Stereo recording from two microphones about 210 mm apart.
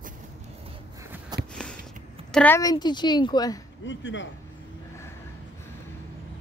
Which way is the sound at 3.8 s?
60° left (ahead or behind).